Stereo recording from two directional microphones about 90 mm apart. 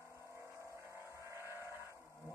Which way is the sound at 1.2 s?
30° right (ahead or behind).